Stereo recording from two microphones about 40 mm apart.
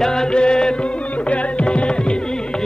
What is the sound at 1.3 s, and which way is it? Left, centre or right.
Music, left.